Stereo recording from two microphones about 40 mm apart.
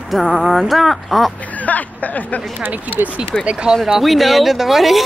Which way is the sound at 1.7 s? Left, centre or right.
Left.